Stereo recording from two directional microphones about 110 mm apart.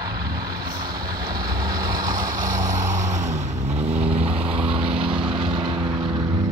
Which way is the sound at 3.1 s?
90° right.